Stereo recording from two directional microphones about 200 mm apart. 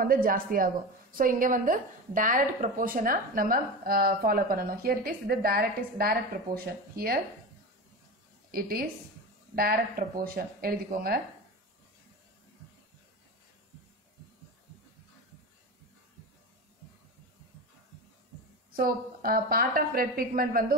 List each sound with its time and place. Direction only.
0.0 s a woman's voice: 45° right (ahead or behind)
8.5 s a woman's voice: 45° right (ahead or behind)
18.7 s a woman's voice: 45° right (ahead or behind)